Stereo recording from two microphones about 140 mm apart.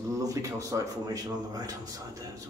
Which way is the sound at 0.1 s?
25° right (ahead or behind).